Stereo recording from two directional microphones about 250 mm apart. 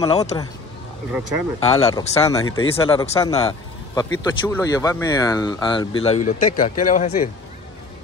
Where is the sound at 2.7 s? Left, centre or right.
Left.